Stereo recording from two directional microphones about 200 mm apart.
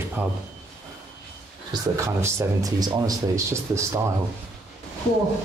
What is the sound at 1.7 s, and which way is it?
Speech, 15° right (ahead or behind).